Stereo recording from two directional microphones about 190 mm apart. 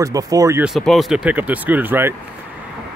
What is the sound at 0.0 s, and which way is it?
Speech, 20° right (ahead or behind).